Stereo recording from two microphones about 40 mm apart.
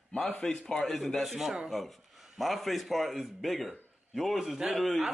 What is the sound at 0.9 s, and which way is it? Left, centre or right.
A man's voice, centre.